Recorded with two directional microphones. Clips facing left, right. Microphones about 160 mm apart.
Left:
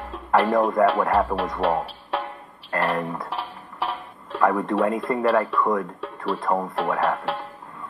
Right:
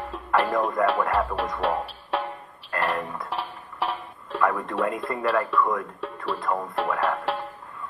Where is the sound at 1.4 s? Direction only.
Centre (ahead or behind).